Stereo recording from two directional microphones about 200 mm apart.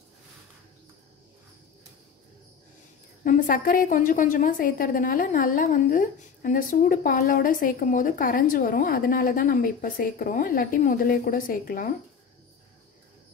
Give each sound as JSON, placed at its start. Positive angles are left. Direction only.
{"t": 3.3, "sound": "a woman's voice", "side_deg": 40}